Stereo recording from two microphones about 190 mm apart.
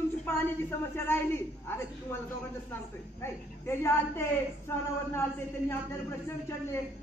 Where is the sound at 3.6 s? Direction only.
15° left (ahead or behind).